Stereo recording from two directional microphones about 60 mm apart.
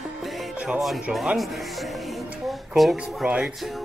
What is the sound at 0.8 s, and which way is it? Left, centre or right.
Speech, centre.